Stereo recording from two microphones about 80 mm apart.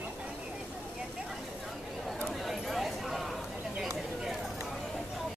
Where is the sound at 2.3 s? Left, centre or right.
Centre.